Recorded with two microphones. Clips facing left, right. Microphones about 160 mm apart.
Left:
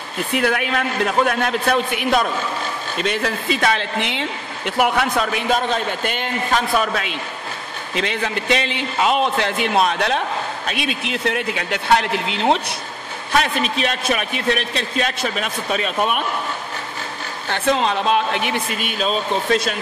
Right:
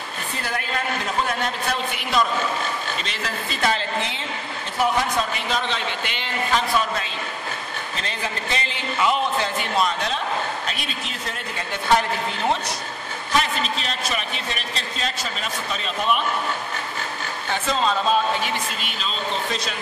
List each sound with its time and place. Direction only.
0.3 s a man's voice: 70° left (ahead or behind)
5.6 s a man's voice: 45° left (ahead or behind)
6.9 s speech: 70° left (ahead or behind)
13.7 s a man's voice: 60° left (ahead or behind)
17.5 s a man's voice: 65° left (ahead or behind)